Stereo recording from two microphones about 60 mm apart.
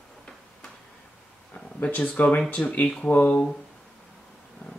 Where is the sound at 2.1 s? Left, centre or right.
Left.